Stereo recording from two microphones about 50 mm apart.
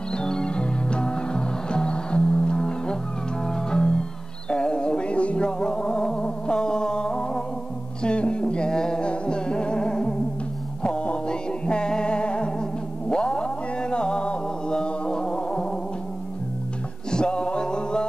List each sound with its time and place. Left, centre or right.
0.1 s music: centre
17.1 s music: centre